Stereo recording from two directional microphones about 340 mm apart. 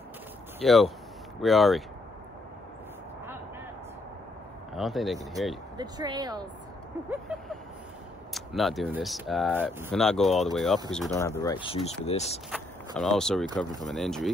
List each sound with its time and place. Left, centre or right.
0.7 s speech: centre
4.7 s speech: centre
5.8 s speech: centre
7.1 s speech: centre
12.4 s speech: centre